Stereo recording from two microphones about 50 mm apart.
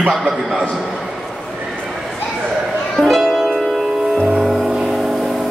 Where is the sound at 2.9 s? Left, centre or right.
Centre.